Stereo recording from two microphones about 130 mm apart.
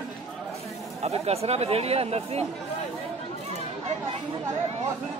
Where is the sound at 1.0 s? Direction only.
50° right (ahead or behind).